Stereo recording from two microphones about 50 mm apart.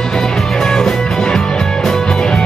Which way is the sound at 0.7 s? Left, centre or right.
Centre.